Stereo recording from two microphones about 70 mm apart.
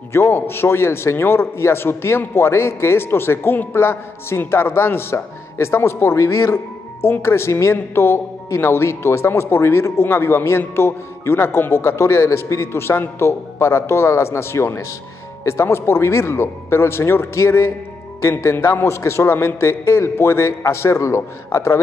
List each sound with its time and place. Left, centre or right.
0.1 s a woman's voice: left